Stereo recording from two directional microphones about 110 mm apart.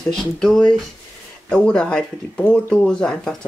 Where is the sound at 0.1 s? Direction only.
5° left (ahead or behind).